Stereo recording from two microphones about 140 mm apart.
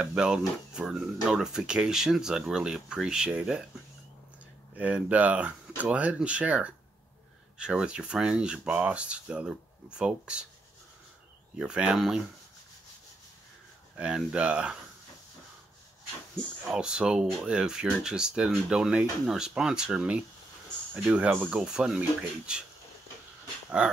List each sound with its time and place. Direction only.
0.0 s speech: 5° right (ahead or behind)
4.7 s speech: 10° right (ahead or behind)
11.5 s speech: 5° right (ahead or behind)
13.9 s speech: 5° right (ahead or behind)
16.6 s speech: 5° right (ahead or behind)